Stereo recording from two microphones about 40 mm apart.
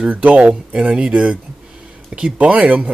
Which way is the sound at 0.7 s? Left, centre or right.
Right.